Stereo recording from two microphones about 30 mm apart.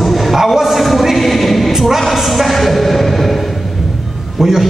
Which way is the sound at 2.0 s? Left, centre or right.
Centre.